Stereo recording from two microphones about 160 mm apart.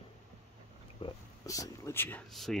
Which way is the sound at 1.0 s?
20° left (ahead or behind).